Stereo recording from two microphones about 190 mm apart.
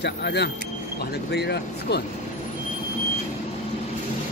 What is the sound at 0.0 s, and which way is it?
Speech, 60° left (ahead or behind).